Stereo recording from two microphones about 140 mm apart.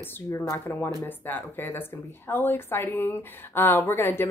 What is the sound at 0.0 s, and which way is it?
A woman's voice, 20° left (ahead or behind).